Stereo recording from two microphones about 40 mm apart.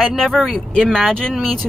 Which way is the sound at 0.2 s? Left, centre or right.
Centre.